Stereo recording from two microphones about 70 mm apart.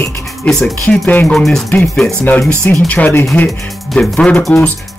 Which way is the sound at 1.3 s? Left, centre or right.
Centre.